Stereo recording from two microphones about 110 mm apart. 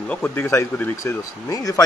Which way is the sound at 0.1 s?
15° left (ahead or behind).